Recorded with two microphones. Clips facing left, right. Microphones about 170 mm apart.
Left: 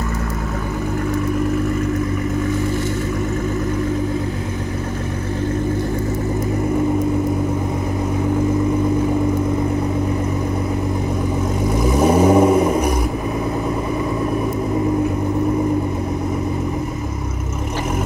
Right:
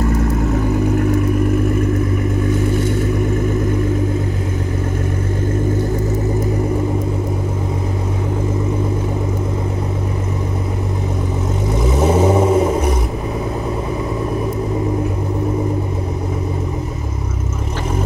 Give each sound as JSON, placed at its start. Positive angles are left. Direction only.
{"t": 11.8, "sound": "vehicle", "side_deg": -25}